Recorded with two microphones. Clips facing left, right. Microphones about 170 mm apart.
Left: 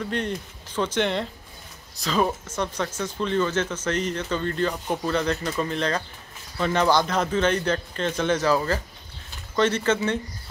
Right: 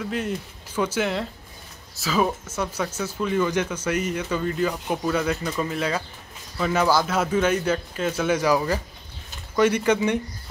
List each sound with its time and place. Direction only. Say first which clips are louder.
0.0 s speech: even; 5° right (ahead or behind)